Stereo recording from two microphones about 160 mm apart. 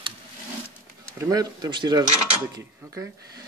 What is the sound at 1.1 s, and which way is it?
Speech, 20° right (ahead or behind).